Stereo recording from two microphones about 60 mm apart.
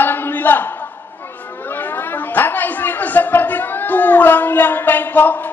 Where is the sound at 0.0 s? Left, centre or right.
Left.